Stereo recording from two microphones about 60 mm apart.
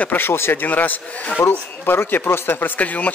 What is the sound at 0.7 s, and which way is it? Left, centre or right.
A man's voice, left.